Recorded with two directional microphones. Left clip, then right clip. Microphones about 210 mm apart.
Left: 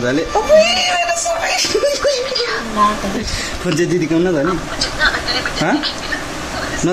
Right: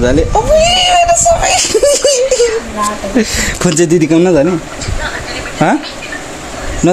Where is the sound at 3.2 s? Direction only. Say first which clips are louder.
Right 10 dB; 40° right (ahead or behind).